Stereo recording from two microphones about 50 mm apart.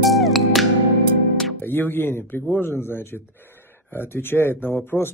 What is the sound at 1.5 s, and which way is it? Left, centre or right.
Speech, left.